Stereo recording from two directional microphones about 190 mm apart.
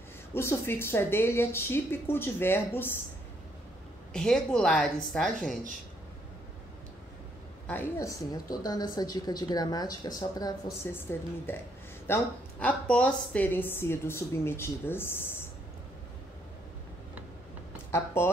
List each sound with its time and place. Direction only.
0.3 s a woman's voice: 15° left (ahead or behind)
4.1 s a woman's voice: 5° left (ahead or behind)
7.6 s a woman's voice: 10° left (ahead or behind)
17.9 s speech: 10° left (ahead or behind)